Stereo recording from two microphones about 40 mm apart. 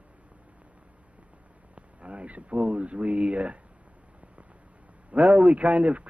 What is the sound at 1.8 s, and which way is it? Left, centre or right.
Speech, right.